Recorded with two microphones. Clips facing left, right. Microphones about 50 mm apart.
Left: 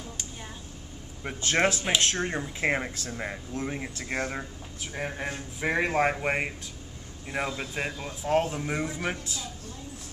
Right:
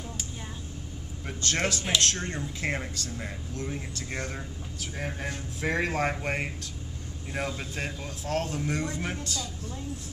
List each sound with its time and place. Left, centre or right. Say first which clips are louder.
1.2 s a man's voice: left 4 dB; left